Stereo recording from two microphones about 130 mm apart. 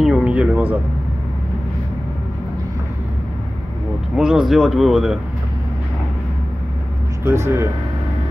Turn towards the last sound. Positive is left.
turn(degrees=-20)  # may be behind; listen again after turning